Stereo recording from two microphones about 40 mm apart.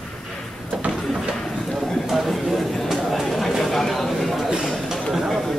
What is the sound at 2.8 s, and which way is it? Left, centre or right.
Chatter, centre.